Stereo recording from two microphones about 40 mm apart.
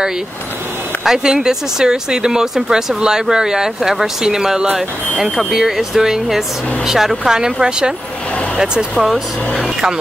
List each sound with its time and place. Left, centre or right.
1.0 s speech: centre
5.2 s speech: centre
5.5 s speech: centre
8.9 s speech: centre